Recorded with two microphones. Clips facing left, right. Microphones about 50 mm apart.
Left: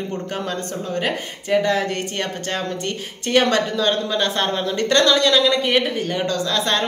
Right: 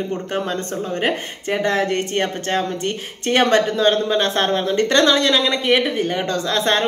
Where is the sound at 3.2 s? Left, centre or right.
Right.